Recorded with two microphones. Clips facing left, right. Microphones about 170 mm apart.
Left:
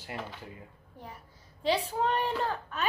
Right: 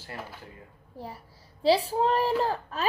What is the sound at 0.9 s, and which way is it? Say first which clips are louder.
A woman's voice: right 7 dB; 35° right (ahead or behind).